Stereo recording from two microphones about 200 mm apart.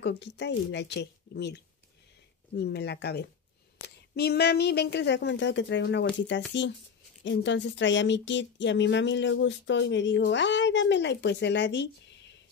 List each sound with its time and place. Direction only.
0.0 s speech: 60° left (ahead or behind)